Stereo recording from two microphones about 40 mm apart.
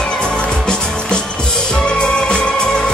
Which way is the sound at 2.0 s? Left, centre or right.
Left.